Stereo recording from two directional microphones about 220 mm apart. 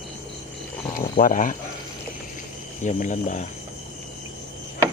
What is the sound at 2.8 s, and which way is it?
Speech, 35° left (ahead or behind).